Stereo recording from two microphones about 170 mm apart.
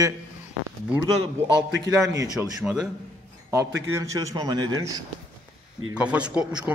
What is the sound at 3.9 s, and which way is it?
A man's voice, 20° right (ahead or behind).